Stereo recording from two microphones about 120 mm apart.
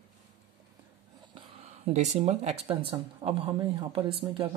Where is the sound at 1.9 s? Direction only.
70° right (ahead or behind).